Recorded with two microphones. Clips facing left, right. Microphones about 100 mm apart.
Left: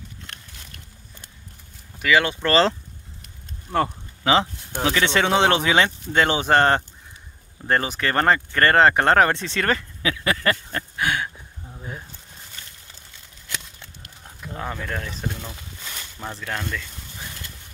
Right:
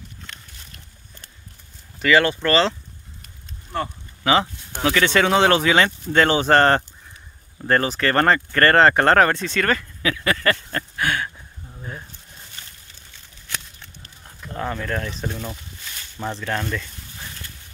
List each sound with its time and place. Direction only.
2.0 s speech: 10° left (ahead or behind)
2.4 s speech: 35° left (ahead or behind)
4.2 s speech: 25° left (ahead or behind)
12.6 s a sound: 35° right (ahead or behind)
14.4 s speech: 5° left (ahead or behind)